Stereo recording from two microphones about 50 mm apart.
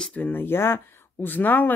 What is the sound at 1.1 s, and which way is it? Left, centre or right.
Speech, left.